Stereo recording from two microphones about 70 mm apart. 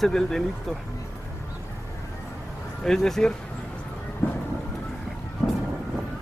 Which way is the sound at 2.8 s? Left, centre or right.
Centre.